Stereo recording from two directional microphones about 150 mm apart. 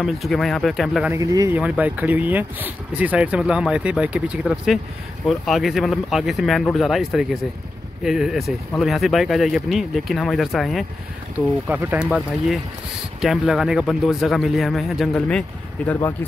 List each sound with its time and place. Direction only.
0.0 s speech: centre (ahead or behind)
1.1 s speech: 20° right (ahead or behind)
1.6 s speech: 10° right (ahead or behind)
11.3 s speech: 10° right (ahead or behind)
13.2 s speech: centre (ahead or behind)